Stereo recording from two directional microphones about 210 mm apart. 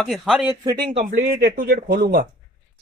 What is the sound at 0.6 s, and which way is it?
Speech, 20° right (ahead or behind).